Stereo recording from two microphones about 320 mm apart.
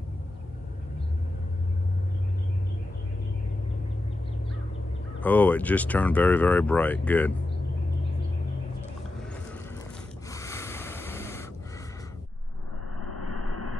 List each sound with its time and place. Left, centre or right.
5.2 s speech: centre
10.3 s a sound: centre
13.0 s vehicle: right